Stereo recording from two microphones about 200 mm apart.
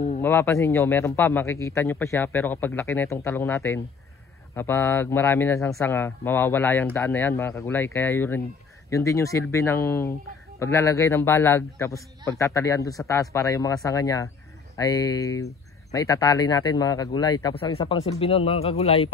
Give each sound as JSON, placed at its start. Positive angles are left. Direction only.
{"t": 0.2, "sound": "a man's voice", "side_deg": 10}